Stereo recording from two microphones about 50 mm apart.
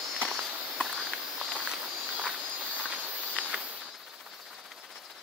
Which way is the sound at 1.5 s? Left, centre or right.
Centre.